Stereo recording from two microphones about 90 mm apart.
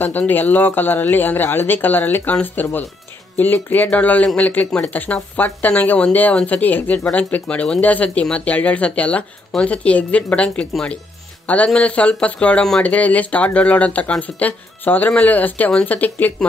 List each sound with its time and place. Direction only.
0.0 s speech: 20° left (ahead or behind)